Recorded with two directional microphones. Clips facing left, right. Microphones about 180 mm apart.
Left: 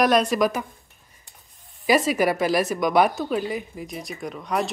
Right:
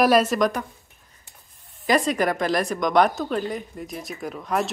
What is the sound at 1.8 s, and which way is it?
A woman's voice, 5° left (ahead or behind).